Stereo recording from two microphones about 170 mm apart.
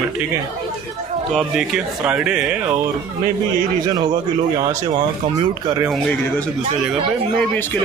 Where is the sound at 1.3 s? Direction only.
5° right (ahead or behind).